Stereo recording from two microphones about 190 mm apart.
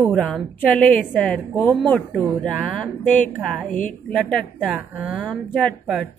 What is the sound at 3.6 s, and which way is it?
Speech, 45° left (ahead or behind).